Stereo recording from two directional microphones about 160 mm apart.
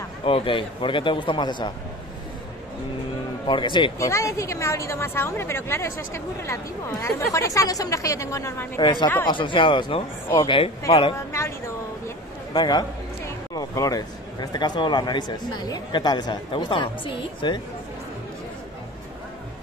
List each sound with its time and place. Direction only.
0.2 s speech: 35° left (ahead or behind)
3.4 s a woman's voice: 30° left (ahead or behind)
11.3 s a sound: 20° left (ahead or behind)
12.5 s speech: 25° left (ahead or behind)